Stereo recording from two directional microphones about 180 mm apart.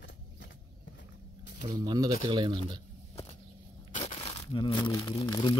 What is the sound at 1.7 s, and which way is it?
Speech, 20° right (ahead or behind).